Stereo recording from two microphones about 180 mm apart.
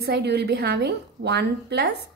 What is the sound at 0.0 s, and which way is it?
A woman's voice, 65° right (ahead or behind).